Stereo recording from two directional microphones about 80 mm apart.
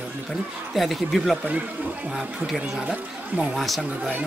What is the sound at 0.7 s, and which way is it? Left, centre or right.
Speech, centre.